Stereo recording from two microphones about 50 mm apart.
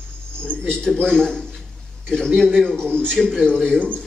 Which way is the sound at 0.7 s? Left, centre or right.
Centre.